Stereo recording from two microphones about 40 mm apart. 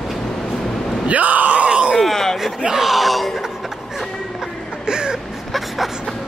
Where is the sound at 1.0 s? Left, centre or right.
Right.